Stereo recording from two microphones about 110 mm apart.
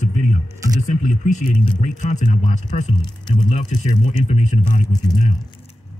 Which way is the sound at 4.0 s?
90° left.